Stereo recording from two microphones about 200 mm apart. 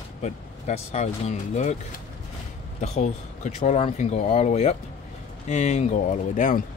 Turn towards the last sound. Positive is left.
turn(degrees=40)  # may be behind; listen again after turning